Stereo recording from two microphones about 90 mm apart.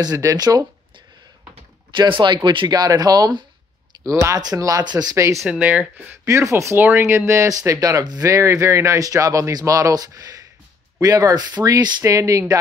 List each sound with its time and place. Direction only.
0.0 s speech: 40° right (ahead or behind)
2.0 s speech: 65° right (ahead or behind); by 5.1 s 45° right (ahead or behind)
5.1 s speech: 35° right (ahead or behind)
5.5 s speech: 15° right (ahead or behind)
6.2 s speech: 35° right (ahead or behind)
8.4 s speech: 30° right (ahead or behind); by 11.9 s 50° right (ahead or behind)
12.0 s speech: 35° right (ahead or behind)